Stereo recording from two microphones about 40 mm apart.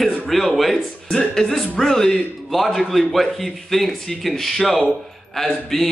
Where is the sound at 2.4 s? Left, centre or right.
Centre.